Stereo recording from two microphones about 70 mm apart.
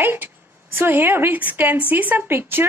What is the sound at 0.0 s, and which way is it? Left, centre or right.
A woman's voice, right.